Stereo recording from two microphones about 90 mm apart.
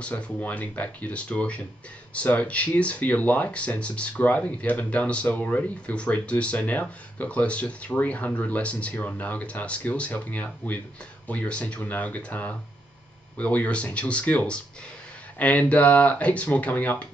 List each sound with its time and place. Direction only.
0.0 s speech: 15° left (ahead or behind)